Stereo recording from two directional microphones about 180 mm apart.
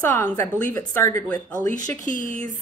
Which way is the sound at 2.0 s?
45° left (ahead or behind).